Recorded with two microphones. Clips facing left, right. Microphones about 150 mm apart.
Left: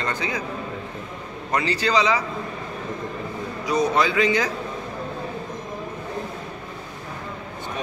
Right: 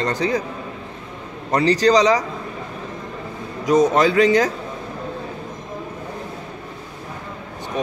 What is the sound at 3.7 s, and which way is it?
Speech, 40° right (ahead or behind).